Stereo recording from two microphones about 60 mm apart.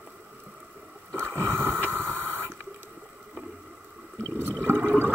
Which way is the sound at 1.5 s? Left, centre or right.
Right.